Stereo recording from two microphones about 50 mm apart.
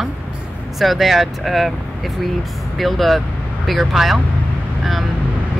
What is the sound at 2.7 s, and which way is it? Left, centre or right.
Speech, centre.